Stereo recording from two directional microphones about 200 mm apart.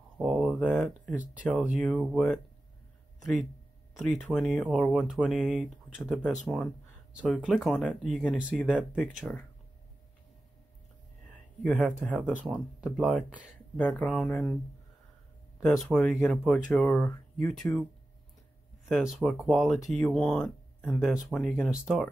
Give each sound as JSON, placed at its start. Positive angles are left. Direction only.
{"t": 0.2, "sound": "speech", "side_deg": 0}
{"t": 11.6, "sound": "speech", "side_deg": 5}
{"t": 12.2, "sound": "speech", "side_deg": -5}
{"t": 15.6, "sound": "speech", "side_deg": 0}
{"t": 18.9, "sound": "speech", "side_deg": 0}